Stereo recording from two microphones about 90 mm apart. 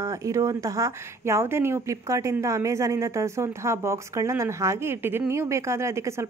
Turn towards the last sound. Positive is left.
turn(degrees=-30)  # may be behind; listen again after turning